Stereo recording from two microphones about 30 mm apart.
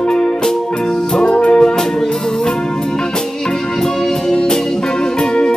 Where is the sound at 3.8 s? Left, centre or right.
Centre.